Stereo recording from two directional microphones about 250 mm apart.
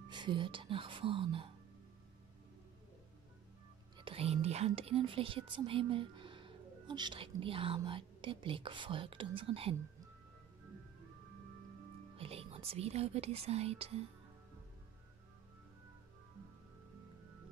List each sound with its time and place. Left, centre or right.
0.1 s speech: centre
4.0 s speech: right
12.2 s speech: right